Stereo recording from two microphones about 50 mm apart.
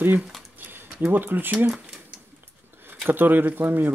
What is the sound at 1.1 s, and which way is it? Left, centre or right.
Speech, right.